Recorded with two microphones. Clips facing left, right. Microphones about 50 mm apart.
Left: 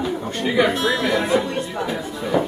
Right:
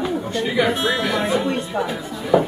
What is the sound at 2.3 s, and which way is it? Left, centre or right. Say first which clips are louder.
Speech: right 4 dB; centre.